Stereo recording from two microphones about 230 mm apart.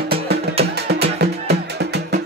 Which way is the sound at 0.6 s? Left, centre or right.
Right.